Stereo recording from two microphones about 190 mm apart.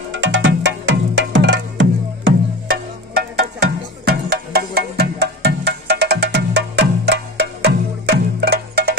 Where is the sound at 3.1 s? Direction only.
55° right (ahead or behind).